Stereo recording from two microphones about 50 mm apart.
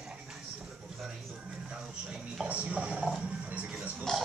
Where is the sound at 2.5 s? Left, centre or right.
Right.